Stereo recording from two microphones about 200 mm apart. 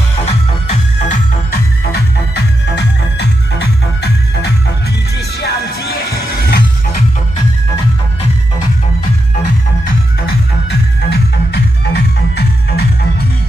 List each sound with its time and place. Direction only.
0.2 s music: 30° left (ahead or behind)
1.5 s music: 55° left (ahead or behind)
10.7 s music: 55° left (ahead or behind)